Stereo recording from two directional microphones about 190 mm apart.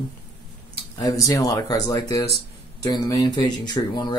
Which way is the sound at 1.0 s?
20° left (ahead or behind).